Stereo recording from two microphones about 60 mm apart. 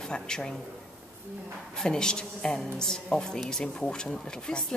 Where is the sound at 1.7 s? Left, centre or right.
Centre.